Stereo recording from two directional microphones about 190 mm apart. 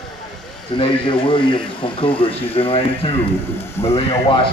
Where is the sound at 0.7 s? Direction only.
25° left (ahead or behind).